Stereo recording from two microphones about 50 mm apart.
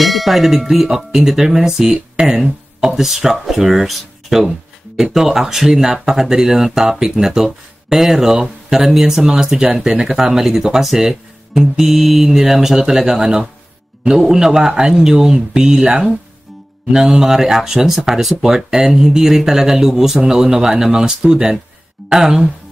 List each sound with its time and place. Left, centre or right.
0.0 s tubular bells: centre
0.9 s speech: centre